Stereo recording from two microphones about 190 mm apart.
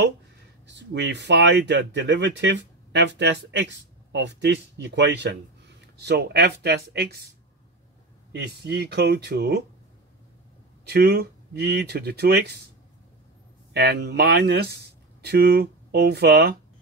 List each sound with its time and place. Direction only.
0.7 s speech: 65° right (ahead or behind)
8.4 s speech: 60° right (ahead or behind)
10.9 s speech: 55° right (ahead or behind)
13.7 s speech: 60° right (ahead or behind)